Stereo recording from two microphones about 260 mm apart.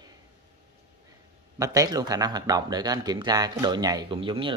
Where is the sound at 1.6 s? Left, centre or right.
Centre.